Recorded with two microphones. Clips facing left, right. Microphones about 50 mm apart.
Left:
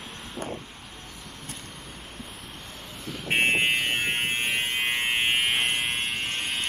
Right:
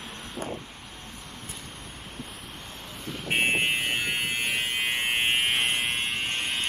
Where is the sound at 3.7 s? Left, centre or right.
Left.